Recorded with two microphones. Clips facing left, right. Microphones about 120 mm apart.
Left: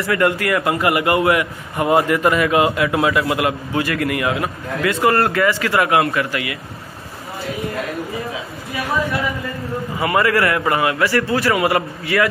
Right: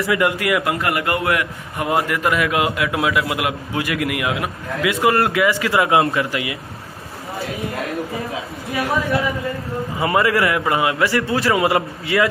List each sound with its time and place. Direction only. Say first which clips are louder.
0.1 s a man's voice: left 2 dB; 10° right (ahead or behind)
0.7 s a man's voice: left 4 dB; 5° left (ahead or behind); by 6.6 s 20° right (ahead or behind)
9.9 s a man's voice: even; 20° right (ahead or behind)